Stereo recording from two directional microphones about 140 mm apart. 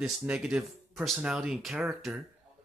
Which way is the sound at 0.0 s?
5° right (ahead or behind).